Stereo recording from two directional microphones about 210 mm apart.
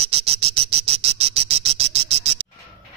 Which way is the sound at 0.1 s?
30° right (ahead or behind).